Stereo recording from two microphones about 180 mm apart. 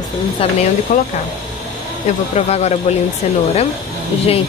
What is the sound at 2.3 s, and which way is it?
Speech, 35° left (ahead or behind).